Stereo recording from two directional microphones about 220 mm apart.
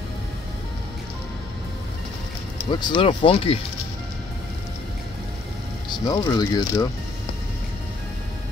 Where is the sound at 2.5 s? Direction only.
20° left (ahead or behind).